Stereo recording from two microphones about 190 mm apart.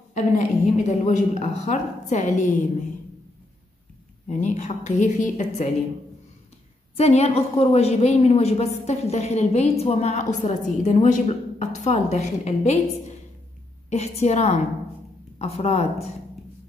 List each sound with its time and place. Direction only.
0.1 s a woman's voice: 40° left (ahead or behind)
4.3 s a woman's voice: 40° left (ahead or behind)
7.0 s a woman's voice: 35° left (ahead or behind)